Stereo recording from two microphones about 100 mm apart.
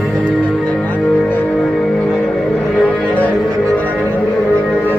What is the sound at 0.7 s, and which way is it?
Music, 15° left (ahead or behind).